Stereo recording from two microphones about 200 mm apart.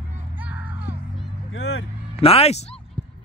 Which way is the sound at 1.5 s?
85° left.